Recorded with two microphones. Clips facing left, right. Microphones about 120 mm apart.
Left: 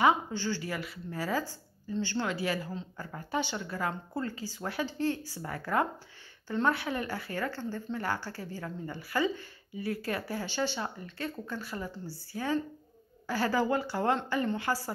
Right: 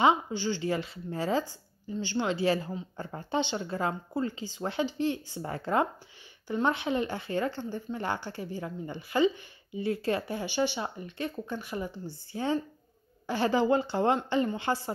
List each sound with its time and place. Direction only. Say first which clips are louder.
0.0 s a woman's voice: right 2 dB; 20° right (ahead or behind)